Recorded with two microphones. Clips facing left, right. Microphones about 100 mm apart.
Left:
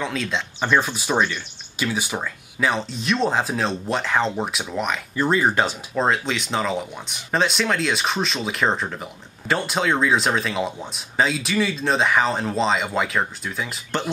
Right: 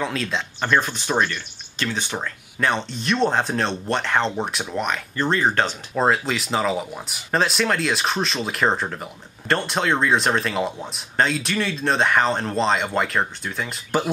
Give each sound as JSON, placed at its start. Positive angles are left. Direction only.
{"t": 0.0, "sound": "speech", "side_deg": 0}
{"t": 5.9, "sound": "speech", "side_deg": 0}